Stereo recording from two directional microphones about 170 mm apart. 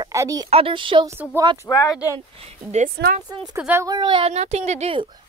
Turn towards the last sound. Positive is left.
turn(degrees=-30)  # may be behind; listen again after turning